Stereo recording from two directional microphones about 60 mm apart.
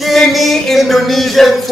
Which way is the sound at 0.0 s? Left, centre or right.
Centre.